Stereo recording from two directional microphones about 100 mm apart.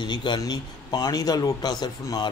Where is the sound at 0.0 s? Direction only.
50° left (ahead or behind).